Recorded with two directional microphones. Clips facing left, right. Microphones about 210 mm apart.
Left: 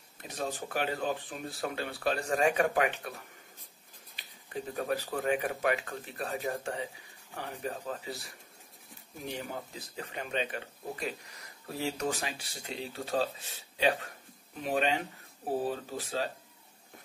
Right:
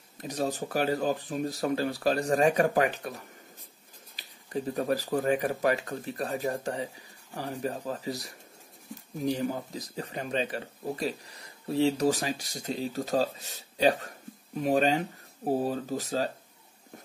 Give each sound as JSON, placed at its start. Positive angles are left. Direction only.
{"t": 0.2, "sound": "speech", "side_deg": -40}